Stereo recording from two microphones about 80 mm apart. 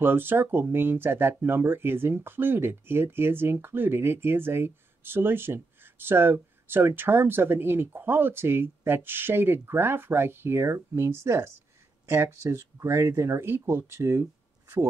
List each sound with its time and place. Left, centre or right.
0.0 s speech: right